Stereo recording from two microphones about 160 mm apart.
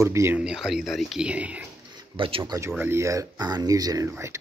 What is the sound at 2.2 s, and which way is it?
Speech, 30° right (ahead or behind).